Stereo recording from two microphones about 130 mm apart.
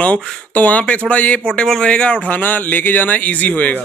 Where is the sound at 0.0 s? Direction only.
10° left (ahead or behind).